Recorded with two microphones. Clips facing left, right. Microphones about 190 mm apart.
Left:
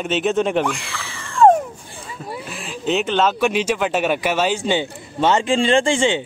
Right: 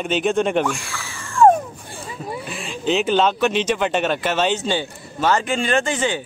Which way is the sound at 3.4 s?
10° left (ahead or behind).